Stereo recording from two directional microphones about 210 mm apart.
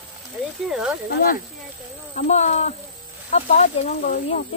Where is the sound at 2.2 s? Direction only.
35° left (ahead or behind).